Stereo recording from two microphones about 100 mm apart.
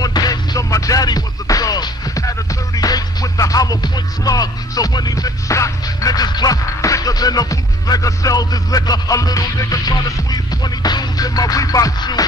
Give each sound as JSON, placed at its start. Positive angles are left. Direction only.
{"t": 0.0, "sound": "music", "side_deg": 40}